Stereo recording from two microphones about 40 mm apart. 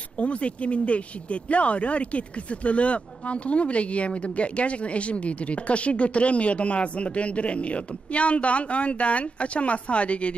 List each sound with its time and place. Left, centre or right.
0.2 s speech: left